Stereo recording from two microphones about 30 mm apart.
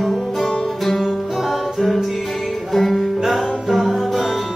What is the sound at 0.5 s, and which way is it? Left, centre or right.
Music, centre.